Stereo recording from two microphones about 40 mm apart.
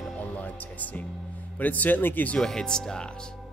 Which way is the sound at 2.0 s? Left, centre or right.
Left.